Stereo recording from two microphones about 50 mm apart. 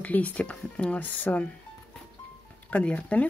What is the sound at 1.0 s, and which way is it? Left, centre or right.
Speech, left.